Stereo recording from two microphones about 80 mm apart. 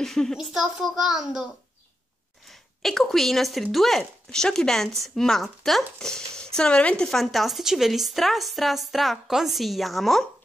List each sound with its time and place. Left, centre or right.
0.0 s speech: centre
2.4 s speech: centre